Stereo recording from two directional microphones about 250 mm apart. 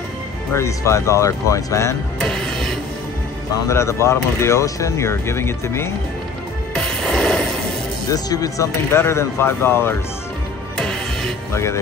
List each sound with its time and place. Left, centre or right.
0.5 s speech: centre
6.7 s music: centre
8.1 s speech: centre
10.8 s music: centre